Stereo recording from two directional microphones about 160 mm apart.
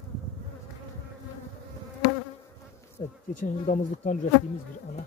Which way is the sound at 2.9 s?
50° left (ahead or behind).